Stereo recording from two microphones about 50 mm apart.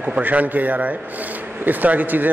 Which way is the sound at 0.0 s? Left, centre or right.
Right.